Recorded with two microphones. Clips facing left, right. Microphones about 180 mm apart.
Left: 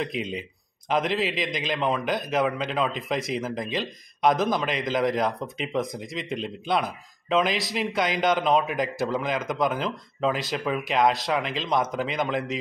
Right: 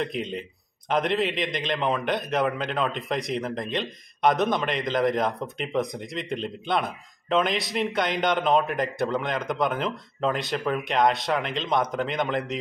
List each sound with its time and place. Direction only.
0.0 s a man's voice: centre (ahead or behind)